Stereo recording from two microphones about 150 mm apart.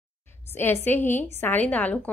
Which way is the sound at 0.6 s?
15° left (ahead or behind).